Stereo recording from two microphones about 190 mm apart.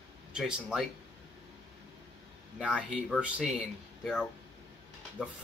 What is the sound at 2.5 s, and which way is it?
Speech, 5° right (ahead or behind).